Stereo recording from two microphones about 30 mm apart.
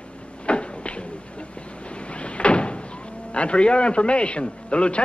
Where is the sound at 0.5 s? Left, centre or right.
Left.